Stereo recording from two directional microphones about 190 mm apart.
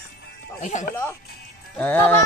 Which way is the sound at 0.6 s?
40° left (ahead or behind).